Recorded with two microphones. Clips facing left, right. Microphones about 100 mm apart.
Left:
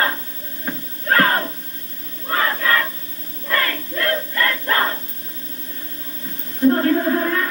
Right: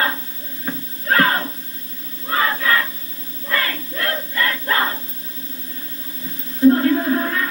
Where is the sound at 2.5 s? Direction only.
40° left (ahead or behind).